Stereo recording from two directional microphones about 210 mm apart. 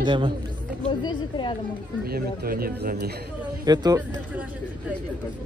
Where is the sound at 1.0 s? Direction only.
20° left (ahead or behind).